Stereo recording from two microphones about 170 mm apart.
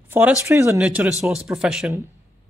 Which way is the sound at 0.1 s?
10° right (ahead or behind).